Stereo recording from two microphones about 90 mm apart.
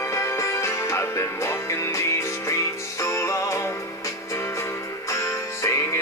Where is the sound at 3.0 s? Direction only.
35° left (ahead or behind).